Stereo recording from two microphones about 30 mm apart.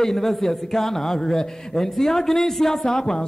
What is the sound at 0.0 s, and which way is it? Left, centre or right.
A man's voice, centre.